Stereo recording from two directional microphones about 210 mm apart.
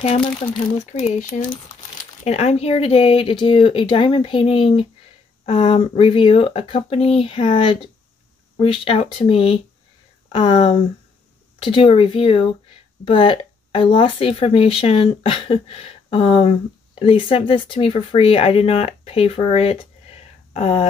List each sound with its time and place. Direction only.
0.0 s speech: 25° left (ahead or behind)